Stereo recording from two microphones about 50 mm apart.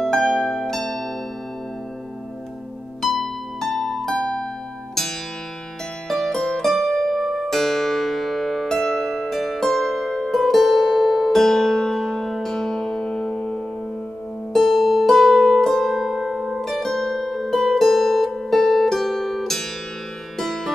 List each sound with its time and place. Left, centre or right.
0.0 s harp: centre
3.0 s harp: centre
4.2 s harp: centre
6.0 s music: centre
14.5 s harp: centre
20.3 s music: centre